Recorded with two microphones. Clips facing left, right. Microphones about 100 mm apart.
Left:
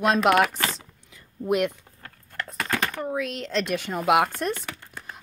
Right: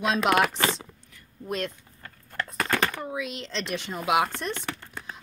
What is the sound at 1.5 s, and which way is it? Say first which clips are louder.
Speech: left 8 dB; 15° left (ahead or behind).